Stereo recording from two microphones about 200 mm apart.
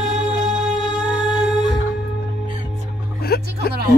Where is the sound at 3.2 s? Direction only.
50° left (ahead or behind).